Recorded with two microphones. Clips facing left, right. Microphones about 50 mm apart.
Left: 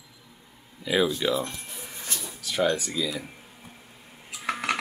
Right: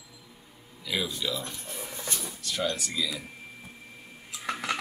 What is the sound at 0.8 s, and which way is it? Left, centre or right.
Speech, left.